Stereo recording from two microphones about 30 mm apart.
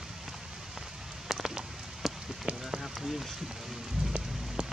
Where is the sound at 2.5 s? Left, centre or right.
Right.